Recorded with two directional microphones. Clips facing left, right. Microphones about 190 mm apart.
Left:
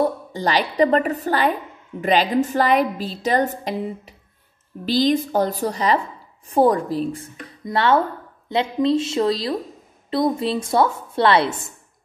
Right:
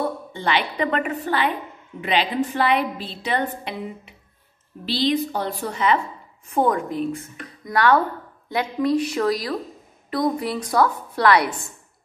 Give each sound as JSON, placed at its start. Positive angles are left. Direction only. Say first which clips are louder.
{"t": 0.3, "sound": "a woman's voice", "louder": "left 2 dB", "side_deg": 40}
{"t": 4.8, "sound": "a woman's voice", "louder": "left 3 dB", "side_deg": 45}